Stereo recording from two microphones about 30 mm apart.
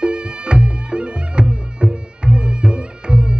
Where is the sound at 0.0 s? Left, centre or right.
Right.